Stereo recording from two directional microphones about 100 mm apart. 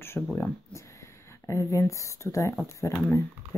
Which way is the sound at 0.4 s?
30° left (ahead or behind).